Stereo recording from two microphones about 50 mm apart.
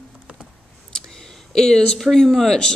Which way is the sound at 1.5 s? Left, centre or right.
Centre.